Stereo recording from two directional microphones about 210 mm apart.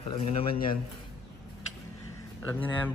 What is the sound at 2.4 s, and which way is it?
Speech, 10° left (ahead or behind).